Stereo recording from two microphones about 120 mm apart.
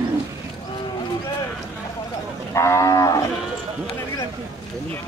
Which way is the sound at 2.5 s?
25° left (ahead or behind).